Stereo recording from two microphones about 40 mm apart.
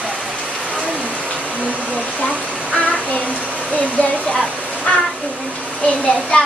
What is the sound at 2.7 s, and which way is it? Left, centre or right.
Child singing, left.